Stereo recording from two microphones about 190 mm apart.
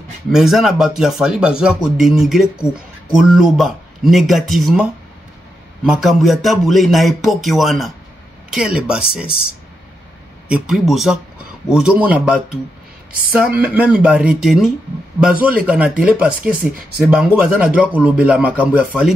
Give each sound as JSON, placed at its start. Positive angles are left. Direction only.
{"t": 0.3, "sound": "speech", "side_deg": 0}
{"t": 5.9, "sound": "speech", "side_deg": 0}
{"t": 10.5, "sound": "speech", "side_deg": 0}
{"t": 16.3, "sound": "speech", "side_deg": -50}
{"t": 17.0, "sound": "speech", "side_deg": -5}